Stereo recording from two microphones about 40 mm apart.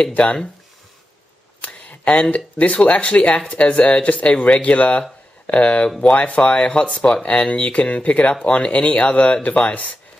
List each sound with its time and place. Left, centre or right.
0.1 s speech: left
1.6 s speech: left
5.9 s speech: centre
6.1 s speech: left